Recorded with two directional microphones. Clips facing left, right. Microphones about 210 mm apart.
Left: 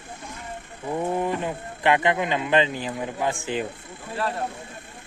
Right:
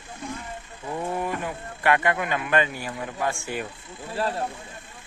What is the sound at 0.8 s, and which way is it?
Speech, 15° left (ahead or behind).